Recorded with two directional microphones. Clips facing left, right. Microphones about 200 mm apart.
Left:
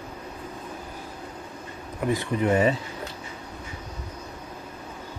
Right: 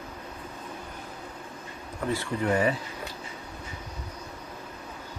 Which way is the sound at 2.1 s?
20° left (ahead or behind).